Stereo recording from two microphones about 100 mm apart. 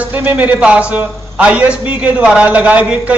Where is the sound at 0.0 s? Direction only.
15° right (ahead or behind).